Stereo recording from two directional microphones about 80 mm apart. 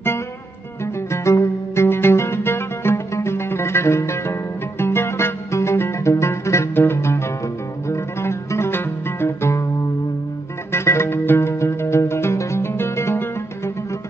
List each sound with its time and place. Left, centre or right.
1.1 s music: left
10.7 s music: left